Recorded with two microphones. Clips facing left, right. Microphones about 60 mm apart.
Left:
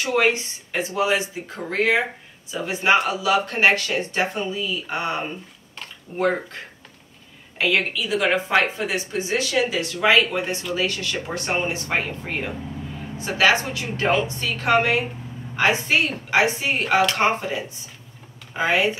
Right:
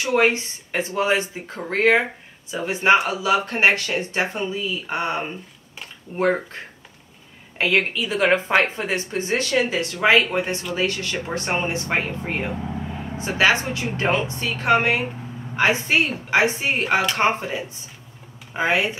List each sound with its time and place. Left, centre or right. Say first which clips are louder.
0.2 s a woman's voice: right 1 dB; right
18.6 s speech: even; right